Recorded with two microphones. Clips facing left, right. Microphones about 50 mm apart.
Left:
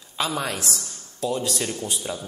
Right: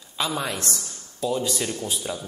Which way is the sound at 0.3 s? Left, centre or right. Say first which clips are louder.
Left 1 dB; centre.